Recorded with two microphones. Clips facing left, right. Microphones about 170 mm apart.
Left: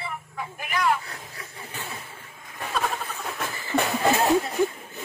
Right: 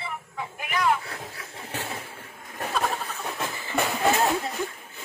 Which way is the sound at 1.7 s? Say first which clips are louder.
Right 4 dB; 80° right.